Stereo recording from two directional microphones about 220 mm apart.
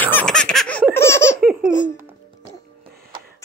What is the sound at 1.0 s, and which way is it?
Laughter, 10° left (ahead or behind).